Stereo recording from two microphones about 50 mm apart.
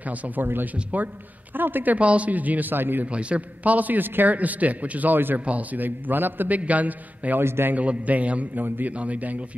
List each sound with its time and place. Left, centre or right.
0.4 s a man's voice: right
2.0 s a man's voice: right
3.1 s a man's voice: right
7.4 s a man's voice: right
7.7 s a man's voice: right
8.6 s a man's voice: right